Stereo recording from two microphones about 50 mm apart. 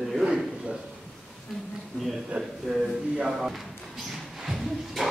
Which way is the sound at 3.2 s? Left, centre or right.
Centre.